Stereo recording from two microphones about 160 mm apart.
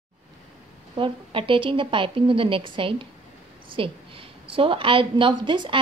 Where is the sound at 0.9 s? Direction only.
30° right (ahead or behind).